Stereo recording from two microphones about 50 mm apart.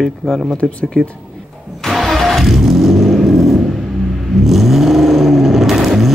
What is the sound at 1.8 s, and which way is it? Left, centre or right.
Vehicle, centre.